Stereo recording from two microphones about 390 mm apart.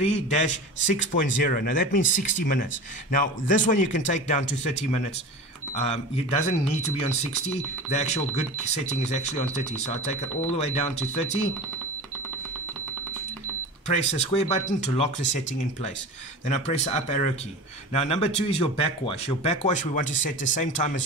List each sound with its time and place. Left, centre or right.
0.0 s a man's voice: centre
13.9 s a man's voice: centre